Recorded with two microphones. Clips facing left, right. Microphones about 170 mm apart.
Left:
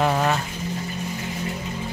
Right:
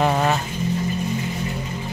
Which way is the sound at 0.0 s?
10° right (ahead or behind).